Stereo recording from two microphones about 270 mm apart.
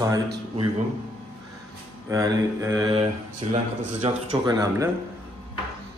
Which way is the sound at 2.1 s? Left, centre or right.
Centre.